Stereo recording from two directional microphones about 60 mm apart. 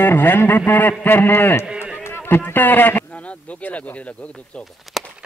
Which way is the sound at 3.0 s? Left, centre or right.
Left.